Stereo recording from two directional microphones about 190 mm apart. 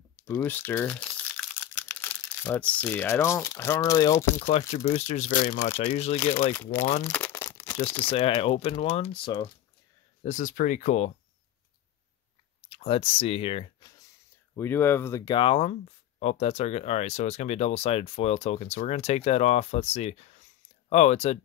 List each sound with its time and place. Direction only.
0.3 s speech: 10° left (ahead or behind)
4.5 s speech: 35° left (ahead or behind)
6.5 s speech: 10° left (ahead or behind)
7.1 s crumpling: 10° left (ahead or behind)
8.1 s speech: 30° left (ahead or behind)
10.2 s speech: 40° left (ahead or behind)
12.6 s speech: 30° left (ahead or behind)